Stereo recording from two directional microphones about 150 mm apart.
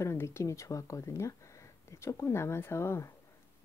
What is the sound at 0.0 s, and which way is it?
Speech, 15° left (ahead or behind).